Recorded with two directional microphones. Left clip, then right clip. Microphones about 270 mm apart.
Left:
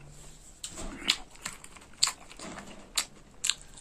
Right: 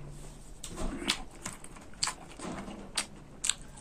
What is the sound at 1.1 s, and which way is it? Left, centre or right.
Dog, centre.